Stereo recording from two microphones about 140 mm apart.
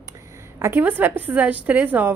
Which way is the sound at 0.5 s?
15° right (ahead or behind).